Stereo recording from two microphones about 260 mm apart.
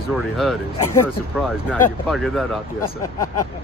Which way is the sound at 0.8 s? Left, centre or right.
Left.